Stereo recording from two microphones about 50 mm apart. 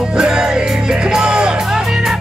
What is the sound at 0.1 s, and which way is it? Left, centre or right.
Music, centre.